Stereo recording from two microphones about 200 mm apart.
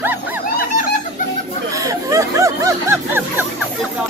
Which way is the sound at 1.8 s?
15° right (ahead or behind).